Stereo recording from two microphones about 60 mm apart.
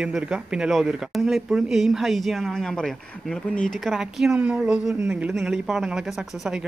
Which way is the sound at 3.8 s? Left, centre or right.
Centre.